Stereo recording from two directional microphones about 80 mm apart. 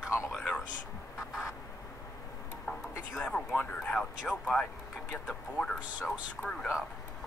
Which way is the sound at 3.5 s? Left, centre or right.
Centre.